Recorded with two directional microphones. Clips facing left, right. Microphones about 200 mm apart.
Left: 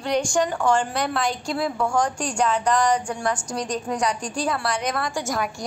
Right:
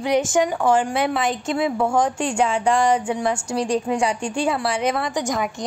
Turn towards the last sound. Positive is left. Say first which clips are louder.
# right 3 dB
turn(degrees=-20)  # may be behind; listen again after turning